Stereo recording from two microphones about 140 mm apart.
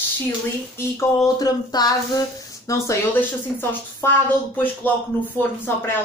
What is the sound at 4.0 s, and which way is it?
Speech, 15° left (ahead or behind).